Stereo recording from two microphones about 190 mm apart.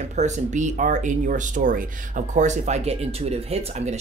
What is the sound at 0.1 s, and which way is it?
Speech, 40° right (ahead or behind).